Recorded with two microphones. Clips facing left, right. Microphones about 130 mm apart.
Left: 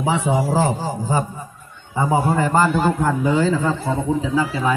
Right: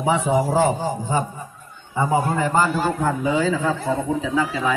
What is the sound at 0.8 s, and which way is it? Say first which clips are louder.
Speech: left 1 dB; 35° left (ahead or behind).